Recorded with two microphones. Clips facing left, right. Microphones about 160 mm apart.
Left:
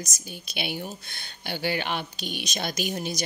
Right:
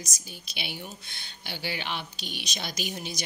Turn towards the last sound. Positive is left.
turn(degrees=45)  # may be behind; listen again after turning